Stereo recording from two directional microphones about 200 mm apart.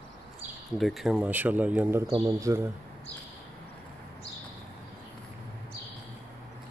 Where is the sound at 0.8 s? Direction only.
Centre (ahead or behind); by 2.6 s 15° right (ahead or behind).